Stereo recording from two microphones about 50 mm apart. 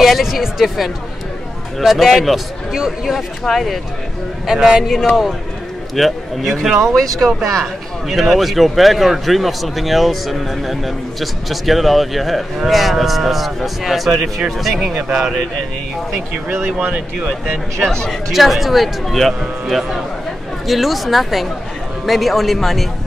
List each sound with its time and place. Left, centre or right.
0.0 s speech: centre
3.4 s speech: centre
4.5 s speech: centre
5.9 s speech: centre
15.0 s speech: centre
16.8 s speech: right
17.8 s speech: centre
18.3 s speech: centre